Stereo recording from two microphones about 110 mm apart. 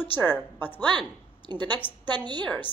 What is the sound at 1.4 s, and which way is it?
Speech, 40° right (ahead or behind).